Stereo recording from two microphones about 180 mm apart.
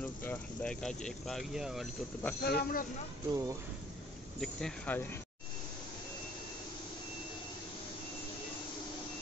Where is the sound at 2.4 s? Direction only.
60° left (ahead or behind).